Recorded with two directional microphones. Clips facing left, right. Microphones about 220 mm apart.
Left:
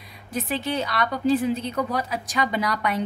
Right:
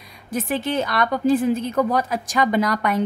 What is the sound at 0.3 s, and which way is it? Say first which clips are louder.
A woman's voice: right 3 dB; 50° right (ahead or behind).